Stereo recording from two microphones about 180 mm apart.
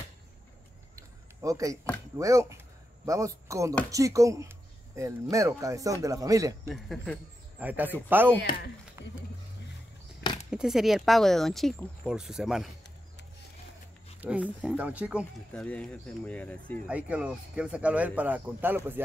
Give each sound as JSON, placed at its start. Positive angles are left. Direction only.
{"t": 0.9, "sound": "a sound", "side_deg": -20}
{"t": 2.1, "sound": "speech", "side_deg": -15}
{"t": 6.7, "sound": "speech", "side_deg": 0}
{"t": 7.6, "sound": "speech", "side_deg": -10}
{"t": 9.0, "sound": "a sound", "side_deg": -15}
{"t": 10.5, "sound": "speech", "side_deg": -5}
{"t": 14.2, "sound": "speech", "side_deg": -5}
{"t": 15.5, "sound": "speech", "side_deg": 5}
{"t": 16.8, "sound": "speech", "side_deg": -5}